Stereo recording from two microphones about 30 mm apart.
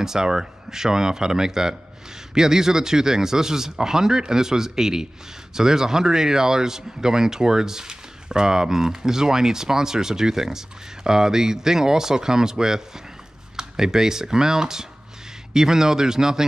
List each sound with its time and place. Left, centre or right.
0.0 s speech: centre